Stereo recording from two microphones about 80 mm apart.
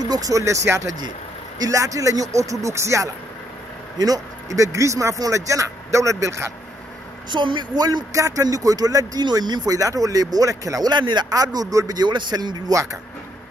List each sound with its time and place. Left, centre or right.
0.0 s speech: right
4.0 s speech: right
7.2 s a woman's voice: right
8.1 s speech: right
10.9 s a man's voice: right